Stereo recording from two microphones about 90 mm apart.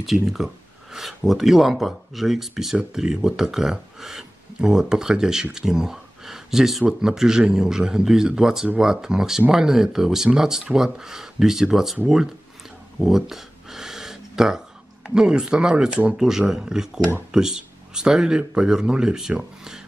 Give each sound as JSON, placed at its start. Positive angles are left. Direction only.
{"t": 0.0, "sound": "speech", "side_deg": 0}
{"t": 13.0, "sound": "a sound", "side_deg": -5}
{"t": 15.0, "sound": "speech", "side_deg": -10}